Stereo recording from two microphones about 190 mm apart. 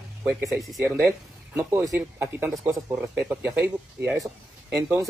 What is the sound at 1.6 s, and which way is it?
Speech, 15° right (ahead or behind).